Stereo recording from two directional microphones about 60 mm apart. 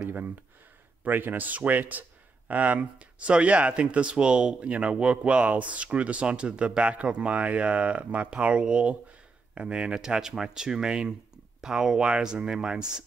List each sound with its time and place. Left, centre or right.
1.0 s speech: right; by 13.0 s centre